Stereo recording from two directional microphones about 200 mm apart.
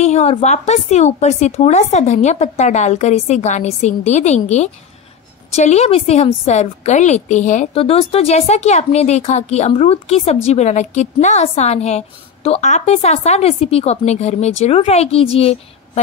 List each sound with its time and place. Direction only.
0.0 s a woman's voice: 35° left (ahead or behind)